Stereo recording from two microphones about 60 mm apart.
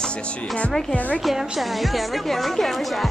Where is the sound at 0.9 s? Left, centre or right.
Left.